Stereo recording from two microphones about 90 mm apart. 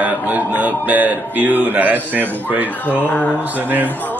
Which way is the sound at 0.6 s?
15° right (ahead or behind).